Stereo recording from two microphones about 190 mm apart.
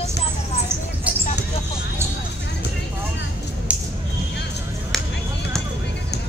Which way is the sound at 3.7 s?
5° right (ahead or behind).